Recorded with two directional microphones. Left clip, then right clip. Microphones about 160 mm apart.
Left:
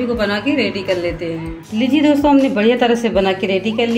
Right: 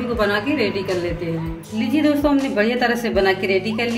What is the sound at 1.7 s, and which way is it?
Speech, 50° left (ahead or behind).